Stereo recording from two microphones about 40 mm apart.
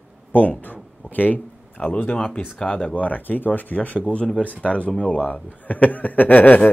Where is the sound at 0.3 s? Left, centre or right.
Left.